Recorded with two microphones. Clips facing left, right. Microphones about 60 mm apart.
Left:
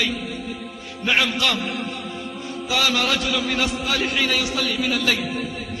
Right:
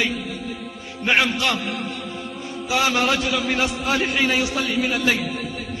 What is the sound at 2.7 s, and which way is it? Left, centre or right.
A man's voice, right.